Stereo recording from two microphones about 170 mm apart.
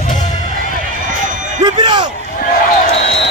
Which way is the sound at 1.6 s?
25° right (ahead or behind).